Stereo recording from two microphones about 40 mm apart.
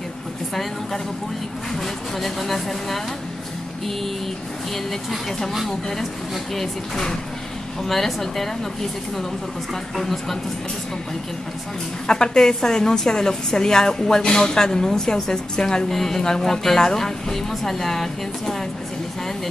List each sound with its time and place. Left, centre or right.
1.7 s a woman's voice: centre
6.5 s a woman's voice: centre
9.9 s speech: centre
12.1 s a woman's voice: centre